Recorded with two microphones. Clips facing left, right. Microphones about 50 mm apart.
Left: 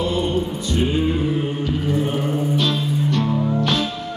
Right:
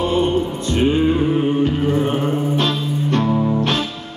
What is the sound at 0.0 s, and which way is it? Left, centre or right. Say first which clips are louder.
Mantra: right 4 dB; right.